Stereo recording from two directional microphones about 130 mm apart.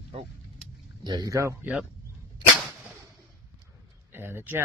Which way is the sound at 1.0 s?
30° right (ahead or behind).